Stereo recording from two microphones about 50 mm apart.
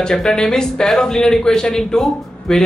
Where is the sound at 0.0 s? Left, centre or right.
Centre.